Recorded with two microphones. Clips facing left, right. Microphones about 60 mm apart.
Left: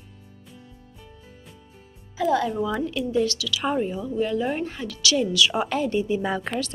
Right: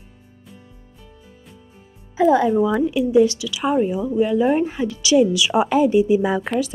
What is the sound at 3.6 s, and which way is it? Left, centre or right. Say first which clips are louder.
A woman's voice: right 7 dB; centre.